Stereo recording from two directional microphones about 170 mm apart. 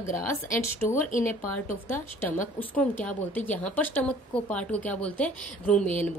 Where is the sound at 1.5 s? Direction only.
10° left (ahead or behind).